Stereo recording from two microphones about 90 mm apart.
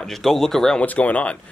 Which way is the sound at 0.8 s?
15° left (ahead or behind).